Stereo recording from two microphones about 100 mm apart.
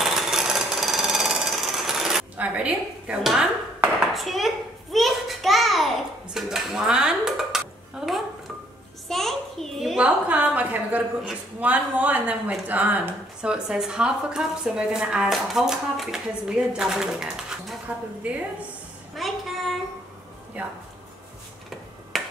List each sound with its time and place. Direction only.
0.0 s jackhammer: 5° right (ahead or behind)
2.3 s dishes: 15° right (ahead or behind)
4.9 s a sound: centre (ahead or behind)
6.3 s dishes: 5° right (ahead or behind)
9.1 s a sound: 5° left (ahead or behind)
10.0 s a woman's voice: 15° right (ahead or behind)
19.1 s a sound: centre (ahead or behind)
20.6 s a woman's voice: 15° right (ahead or behind)
22.1 s finger snapping: centre (ahead or behind)